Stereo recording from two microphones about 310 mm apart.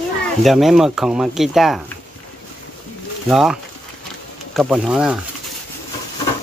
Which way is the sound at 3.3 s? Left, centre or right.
Centre.